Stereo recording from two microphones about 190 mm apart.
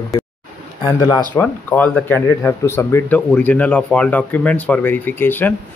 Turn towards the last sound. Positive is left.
turn(degrees=10)  # may be behind; listen again after turning